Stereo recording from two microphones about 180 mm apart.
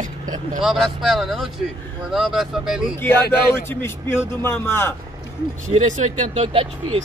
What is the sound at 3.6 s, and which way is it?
A man's voice, 15° left (ahead or behind).